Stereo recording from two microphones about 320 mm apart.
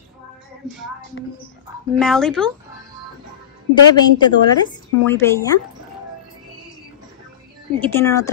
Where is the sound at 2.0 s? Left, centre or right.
Centre.